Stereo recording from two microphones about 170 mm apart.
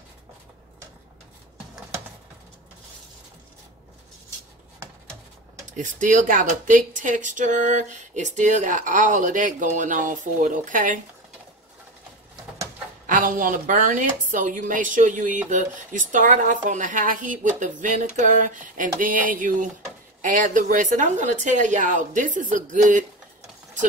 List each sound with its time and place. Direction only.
5.8 s a woman's voice: 50° right (ahead or behind)
13.0 s a woman's voice: 50° right (ahead or behind)